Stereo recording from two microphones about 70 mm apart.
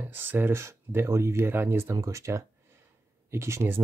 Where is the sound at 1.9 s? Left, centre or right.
Right.